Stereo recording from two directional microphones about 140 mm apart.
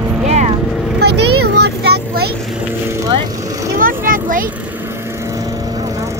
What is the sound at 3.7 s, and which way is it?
Speech, 85° right.